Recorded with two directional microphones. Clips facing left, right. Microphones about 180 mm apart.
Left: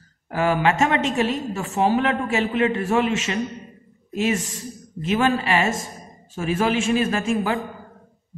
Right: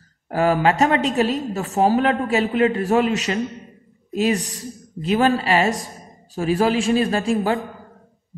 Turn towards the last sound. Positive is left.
turn(degrees=-35)  # may be behind; listen again after turning